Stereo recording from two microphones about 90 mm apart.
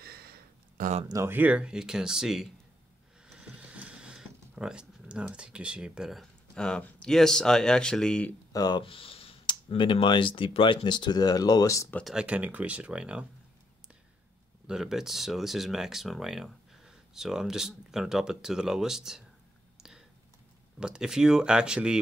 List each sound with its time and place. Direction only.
1.3 s speech: 15° right (ahead or behind)
3.3 s a sound: 10° right (ahead or behind)
6.5 s speech: 10° left (ahead or behind)
8.5 s speech: 45° left (ahead or behind)
8.8 s speech: 90° left
9.7 s speech: 70° left (ahead or behind); by 11.9 s 35° left (ahead or behind)
12.0 s speech: 5° right (ahead or behind)
12.3 s speech: 15° right (ahead or behind)
14.7 s speech: 5° right (ahead or behind)
20.8 s speech: 5° right (ahead or behind)